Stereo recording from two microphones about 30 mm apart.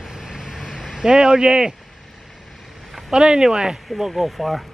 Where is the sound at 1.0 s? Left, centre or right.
Right.